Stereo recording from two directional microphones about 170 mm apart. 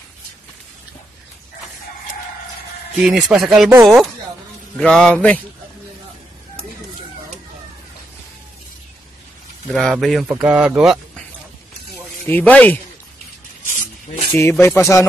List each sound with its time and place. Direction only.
3.0 s speech: 5° right (ahead or behind)
9.7 s speech: centre (ahead or behind)
12.3 s speech: 10° left (ahead or behind)
14.3 s speech: 15° left (ahead or behind)